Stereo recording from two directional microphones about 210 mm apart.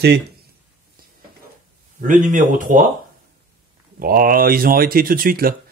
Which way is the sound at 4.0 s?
45° right (ahead or behind).